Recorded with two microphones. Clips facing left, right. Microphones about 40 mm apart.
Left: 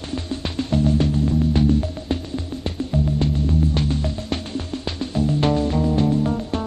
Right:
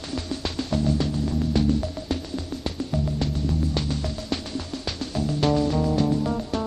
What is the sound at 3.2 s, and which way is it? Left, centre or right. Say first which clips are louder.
Music: left 5 dB; left.